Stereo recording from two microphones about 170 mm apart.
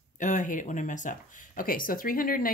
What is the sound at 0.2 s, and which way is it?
Speech, 45° left (ahead or behind).